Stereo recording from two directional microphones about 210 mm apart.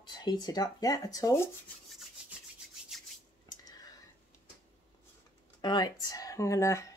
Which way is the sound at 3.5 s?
20° left (ahead or behind).